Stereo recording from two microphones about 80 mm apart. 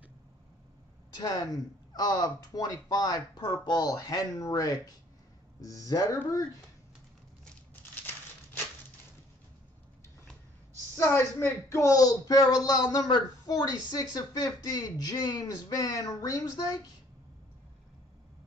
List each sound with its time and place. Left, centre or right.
1.2 s a woman's voice: left
11.0 s a woman's voice: left